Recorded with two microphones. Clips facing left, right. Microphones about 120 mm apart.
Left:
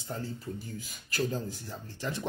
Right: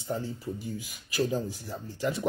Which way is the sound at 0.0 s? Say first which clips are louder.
Right 4 dB; 15° right (ahead or behind).